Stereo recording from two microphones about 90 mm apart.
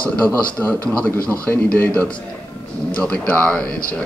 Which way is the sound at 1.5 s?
25° left (ahead or behind).